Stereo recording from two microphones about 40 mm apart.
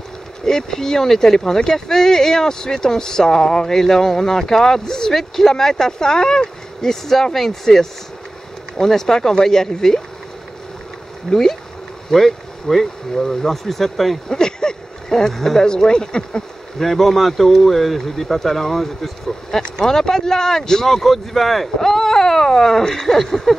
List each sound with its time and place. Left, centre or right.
0.5 s speech: centre
11.2 s speech: centre
14.4 s a sound: centre
15.6 s speech: centre
16.7 s speech: centre